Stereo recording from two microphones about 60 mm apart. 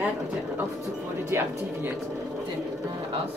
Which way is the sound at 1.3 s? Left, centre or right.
Right.